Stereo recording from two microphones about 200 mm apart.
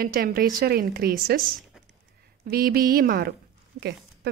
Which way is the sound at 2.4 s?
50° right (ahead or behind).